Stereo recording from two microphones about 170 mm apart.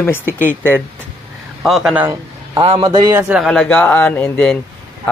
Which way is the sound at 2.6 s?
30° right (ahead or behind).